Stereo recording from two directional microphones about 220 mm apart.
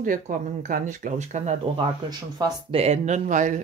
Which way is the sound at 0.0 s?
40° right (ahead or behind).